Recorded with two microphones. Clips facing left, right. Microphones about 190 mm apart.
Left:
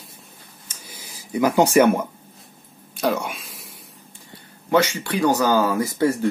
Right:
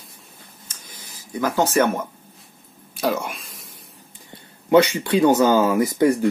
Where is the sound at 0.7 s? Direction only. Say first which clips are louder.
Left 4 dB; 10° left (ahead or behind).